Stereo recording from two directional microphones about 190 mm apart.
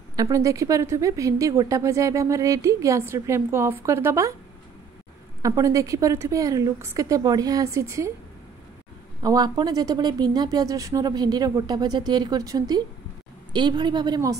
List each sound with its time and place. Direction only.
0.1 s a woman's voice: 20° right (ahead or behind)
5.4 s a woman's voice: 20° right (ahead or behind)
9.2 s a woman's voice: 20° right (ahead or behind)